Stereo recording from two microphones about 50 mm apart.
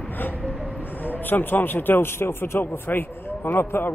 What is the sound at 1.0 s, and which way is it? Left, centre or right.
A man's voice, left.